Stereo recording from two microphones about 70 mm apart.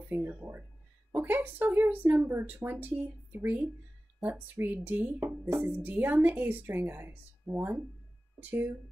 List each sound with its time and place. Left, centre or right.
0.1 s speech: right